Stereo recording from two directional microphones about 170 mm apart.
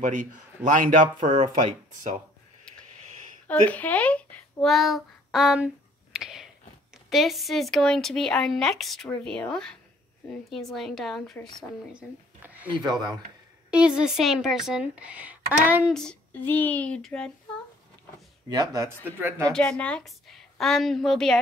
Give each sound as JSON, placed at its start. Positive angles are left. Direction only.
{"t": 0.0, "sound": "speech", "side_deg": -50}
{"t": 3.4, "sound": "a woman's voice", "side_deg": 10}
{"t": 6.1, "sound": "a sound", "side_deg": -5}
{"t": 7.1, "sound": "speech", "side_deg": 0}
{"t": 13.7, "sound": "speech", "side_deg": -5}
{"t": 15.9, "sound": "speech", "side_deg": 5}
{"t": 18.5, "sound": "speech", "side_deg": -20}
{"t": 19.5, "sound": "speech", "side_deg": 5}